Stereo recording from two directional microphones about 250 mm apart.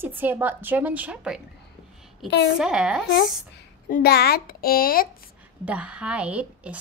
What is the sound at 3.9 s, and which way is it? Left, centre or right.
A child's voice, left.